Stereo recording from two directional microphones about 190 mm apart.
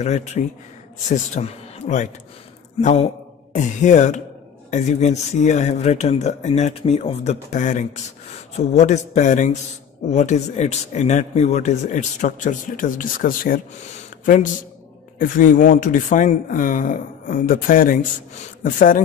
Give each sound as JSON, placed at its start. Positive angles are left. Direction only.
{"t": 0.0, "sound": "speech", "side_deg": 35}